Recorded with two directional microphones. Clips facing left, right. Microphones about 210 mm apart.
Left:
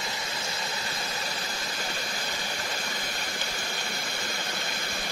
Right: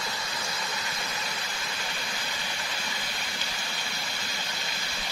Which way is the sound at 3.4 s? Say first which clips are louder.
Left 3 dB; 50° left (ahead or behind).